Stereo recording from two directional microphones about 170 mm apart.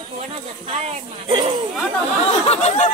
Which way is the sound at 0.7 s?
40° right (ahead or behind).